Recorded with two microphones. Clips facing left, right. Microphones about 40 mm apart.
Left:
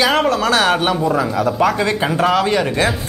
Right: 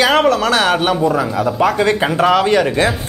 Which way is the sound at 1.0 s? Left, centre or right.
Centre.